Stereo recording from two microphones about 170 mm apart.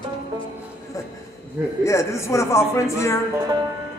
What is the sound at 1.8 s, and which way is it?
Speech, 15° left (ahead or behind).